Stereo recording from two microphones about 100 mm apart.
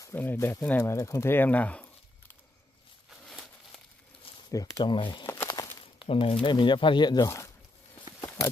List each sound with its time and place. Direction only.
0.1 s speech: 20° left (ahead or behind)
0.4 s speech: 30° left (ahead or behind)
0.7 s speech: 20° left (ahead or behind)
0.9 s speech: 35° left (ahead or behind); by 1.9 s 15° left (ahead or behind)
3.1 s a sound: centre (ahead or behind)
4.5 s speech: 35° left (ahead or behind)
4.8 s speech: 50° left (ahead or behind)
5.2 s a sound: 25° left (ahead or behind)
5.9 s speech: 55° left (ahead or behind)
7.2 s speech: 30° left (ahead or behind)